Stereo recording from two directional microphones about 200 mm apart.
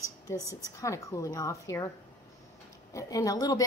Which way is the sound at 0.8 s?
15° left (ahead or behind).